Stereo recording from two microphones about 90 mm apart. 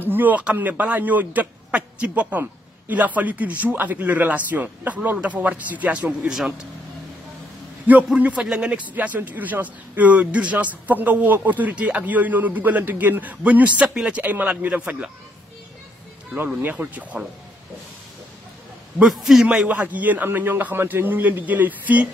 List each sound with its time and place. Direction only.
0.0 s a man's voice: 20° right (ahead or behind)
7.8 s a man's voice: 15° right (ahead or behind)
16.6 s a man's voice: 15° right (ahead or behind)
18.9 s a man's voice: 5° right (ahead or behind)
19.4 s a man's voice: 15° right (ahead or behind)